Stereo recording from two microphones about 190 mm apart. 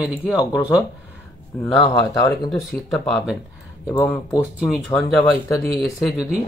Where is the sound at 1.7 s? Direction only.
20° left (ahead or behind).